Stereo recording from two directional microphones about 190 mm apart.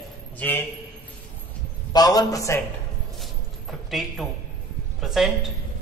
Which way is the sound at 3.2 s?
Centre (ahead or behind).